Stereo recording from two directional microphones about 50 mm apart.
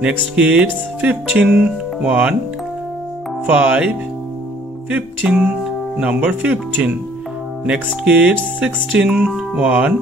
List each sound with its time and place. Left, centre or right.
0.0 s speech: right
3.4 s speech: right
5.3 s speech: centre